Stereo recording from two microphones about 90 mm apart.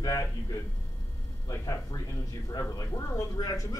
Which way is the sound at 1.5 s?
35° left (ahead or behind).